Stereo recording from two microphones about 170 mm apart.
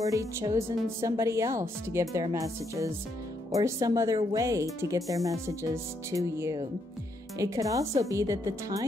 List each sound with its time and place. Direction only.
0.0 s a woman's voice: 20° right (ahead or behind)